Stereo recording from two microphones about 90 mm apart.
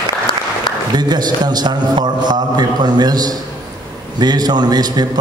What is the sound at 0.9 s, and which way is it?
A man's voice, 50° right (ahead or behind).